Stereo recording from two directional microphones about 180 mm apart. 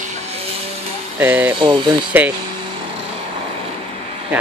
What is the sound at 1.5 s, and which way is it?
Speech, 25° right (ahead or behind).